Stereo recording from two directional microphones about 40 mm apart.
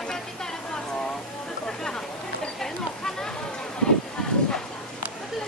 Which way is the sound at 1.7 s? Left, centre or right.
Centre.